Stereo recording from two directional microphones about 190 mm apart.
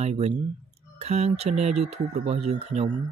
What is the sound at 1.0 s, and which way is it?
Speech, 35° right (ahead or behind).